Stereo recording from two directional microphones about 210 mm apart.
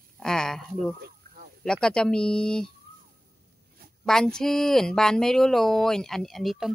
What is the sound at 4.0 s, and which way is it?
Speech, centre (ahead or behind).